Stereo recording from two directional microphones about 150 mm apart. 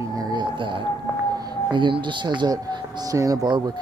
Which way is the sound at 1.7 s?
30° right (ahead or behind).